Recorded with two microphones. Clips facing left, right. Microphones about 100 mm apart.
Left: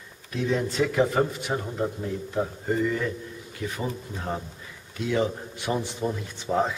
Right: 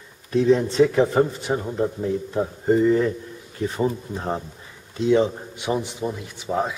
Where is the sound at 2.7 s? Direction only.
30° right (ahead or behind).